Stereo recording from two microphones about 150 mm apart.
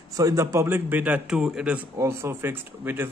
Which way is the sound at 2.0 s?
15° right (ahead or behind).